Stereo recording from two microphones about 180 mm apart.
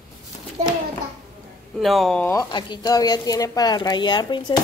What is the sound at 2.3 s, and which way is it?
Speech, 25° left (ahead or behind).